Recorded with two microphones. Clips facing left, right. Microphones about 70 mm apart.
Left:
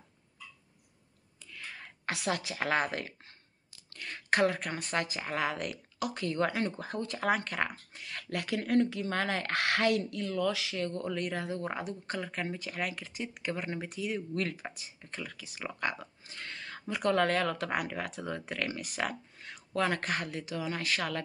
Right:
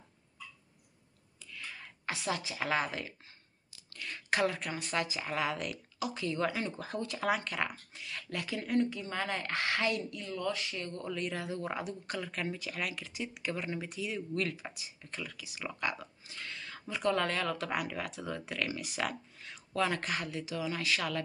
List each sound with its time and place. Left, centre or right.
1.4 s a sound: left
2.0 s speech: left
11.0 s speech: left